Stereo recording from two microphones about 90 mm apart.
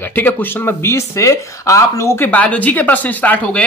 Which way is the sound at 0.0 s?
20° left (ahead or behind).